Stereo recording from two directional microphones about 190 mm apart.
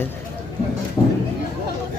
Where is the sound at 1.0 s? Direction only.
15° left (ahead or behind).